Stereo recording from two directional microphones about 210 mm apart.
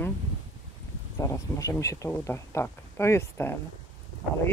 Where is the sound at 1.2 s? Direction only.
15° left (ahead or behind).